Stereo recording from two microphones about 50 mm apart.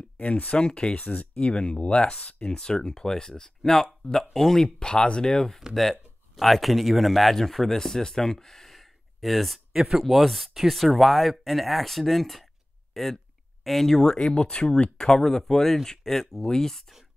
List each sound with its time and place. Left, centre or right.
0.2 s speech: left
0.6 s speech: centre
4.7 s speech: centre
5.8 s speech: centre
14.1 s speech: centre